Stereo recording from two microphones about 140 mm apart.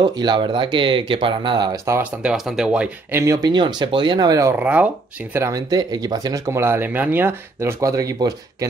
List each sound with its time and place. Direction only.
0.0 s speech: 30° right (ahead or behind)
2.0 s speech: 5° right (ahead or behind)
3.1 s speech: 20° right (ahead or behind)
3.4 s speech: 30° right (ahead or behind)
4.6 s speech: 10° right (ahead or behind)
5.4 s speech: 25° right (ahead or behind)